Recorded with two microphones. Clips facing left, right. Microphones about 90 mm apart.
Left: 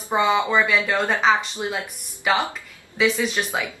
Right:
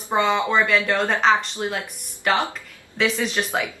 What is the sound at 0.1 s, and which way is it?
Speech, 5° left (ahead or behind).